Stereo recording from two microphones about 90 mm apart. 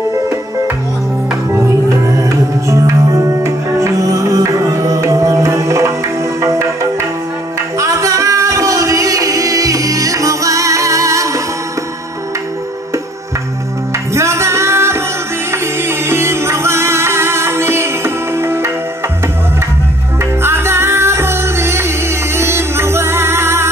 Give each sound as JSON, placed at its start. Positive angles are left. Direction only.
{"t": 1.7, "sound": "music", "side_deg": -35}
{"t": 7.8, "sound": "singing", "side_deg": -35}
{"t": 14.1, "sound": "music", "side_deg": -30}
{"t": 20.4, "sound": "music", "side_deg": -30}